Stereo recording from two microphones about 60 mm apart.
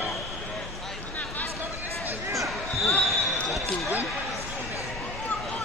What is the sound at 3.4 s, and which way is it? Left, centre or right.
Basketball bounce, centre.